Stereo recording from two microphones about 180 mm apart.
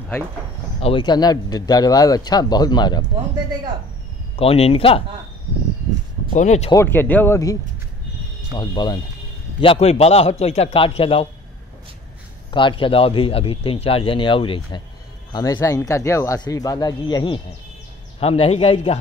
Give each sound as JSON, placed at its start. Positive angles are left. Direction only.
{"t": 0.7, "sound": "speech", "side_deg": 30}
{"t": 4.4, "sound": "a man's voice", "side_deg": 35}
{"t": 6.3, "sound": "a man's voice", "side_deg": 40}
{"t": 6.7, "sound": "speech", "side_deg": 15}
{"t": 8.5, "sound": "a man's voice", "side_deg": 25}
{"t": 12.4, "sound": "a man's voice", "side_deg": 25}